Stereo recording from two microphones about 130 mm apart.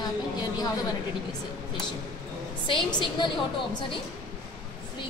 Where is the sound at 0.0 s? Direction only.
30° left (ahead or behind).